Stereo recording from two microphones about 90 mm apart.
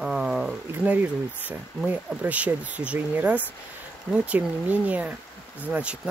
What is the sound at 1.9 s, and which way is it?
Speech, 15° right (ahead or behind).